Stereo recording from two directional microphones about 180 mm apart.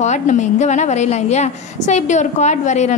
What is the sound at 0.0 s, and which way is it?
A woman's voice, 40° left (ahead or behind).